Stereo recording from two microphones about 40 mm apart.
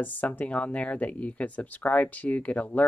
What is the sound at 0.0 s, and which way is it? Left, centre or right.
Speech, left.